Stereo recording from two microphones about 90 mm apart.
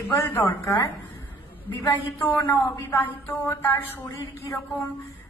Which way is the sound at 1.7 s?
20° left (ahead or behind).